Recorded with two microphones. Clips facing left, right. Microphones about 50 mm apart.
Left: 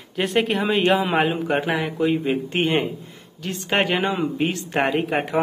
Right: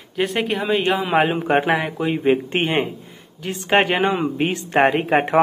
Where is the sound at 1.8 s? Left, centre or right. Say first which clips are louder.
Left 1 dB; centre.